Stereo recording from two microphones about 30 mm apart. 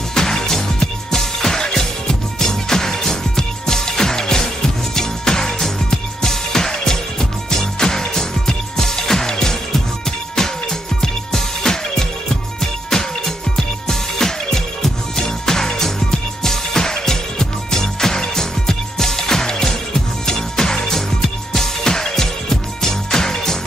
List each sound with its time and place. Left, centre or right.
0.1 s music: centre
11.6 s music: centre